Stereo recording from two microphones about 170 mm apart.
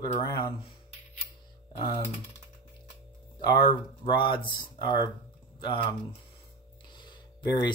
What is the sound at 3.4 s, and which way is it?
Speech, 30° left (ahead or behind).